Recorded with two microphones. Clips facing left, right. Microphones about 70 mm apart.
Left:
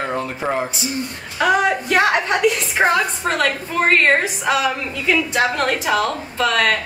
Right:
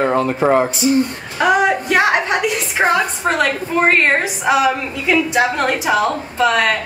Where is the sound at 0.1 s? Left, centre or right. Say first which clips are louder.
Right 8 dB; right.